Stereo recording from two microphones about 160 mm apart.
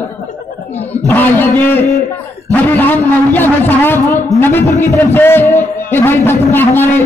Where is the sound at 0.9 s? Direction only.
10° left (ahead or behind).